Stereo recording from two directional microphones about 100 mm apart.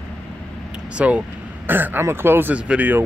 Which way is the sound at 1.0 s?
10° right (ahead or behind).